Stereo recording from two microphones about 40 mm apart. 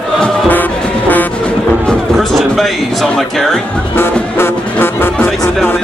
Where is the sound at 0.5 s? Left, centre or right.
Left.